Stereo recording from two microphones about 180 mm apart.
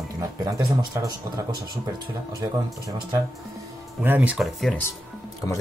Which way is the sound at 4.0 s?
10° right (ahead or behind).